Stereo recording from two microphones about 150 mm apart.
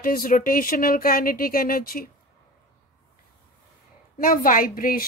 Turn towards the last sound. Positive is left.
turn(degrees=70)  # may be behind; listen again after turning